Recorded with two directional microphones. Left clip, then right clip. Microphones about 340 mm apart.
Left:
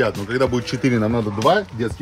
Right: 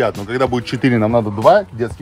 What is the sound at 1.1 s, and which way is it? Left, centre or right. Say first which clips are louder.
Speech: right 8 dB; right.